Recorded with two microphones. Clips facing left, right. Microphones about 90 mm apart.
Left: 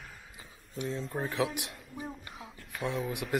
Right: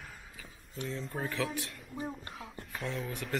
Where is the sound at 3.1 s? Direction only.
10° left (ahead or behind).